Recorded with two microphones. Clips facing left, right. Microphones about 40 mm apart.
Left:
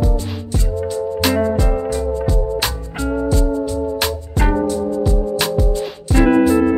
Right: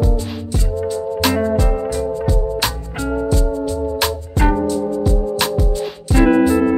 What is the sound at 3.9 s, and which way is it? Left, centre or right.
Music, centre.